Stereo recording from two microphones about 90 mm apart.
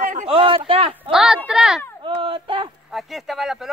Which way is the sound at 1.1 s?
5° right (ahead or behind).